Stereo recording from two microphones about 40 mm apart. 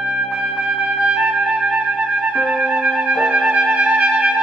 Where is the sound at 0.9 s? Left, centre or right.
Right.